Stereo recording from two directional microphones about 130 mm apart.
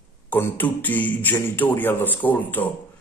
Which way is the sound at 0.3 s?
15° left (ahead or behind).